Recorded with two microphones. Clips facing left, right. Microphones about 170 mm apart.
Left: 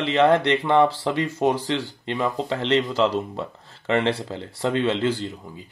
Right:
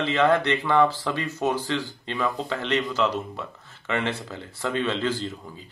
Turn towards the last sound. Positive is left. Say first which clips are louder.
# left 4 dB
turn(degrees=25)  # may be behind; listen again after turning